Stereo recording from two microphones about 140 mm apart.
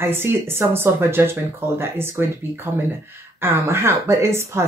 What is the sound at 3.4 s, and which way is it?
Speech, 15° right (ahead or behind).